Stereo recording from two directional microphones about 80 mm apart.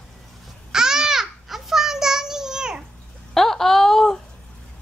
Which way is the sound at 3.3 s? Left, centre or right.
Centre.